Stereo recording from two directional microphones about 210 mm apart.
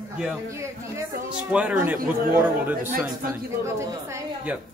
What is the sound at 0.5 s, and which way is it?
A woman's voice, 15° right (ahead or behind).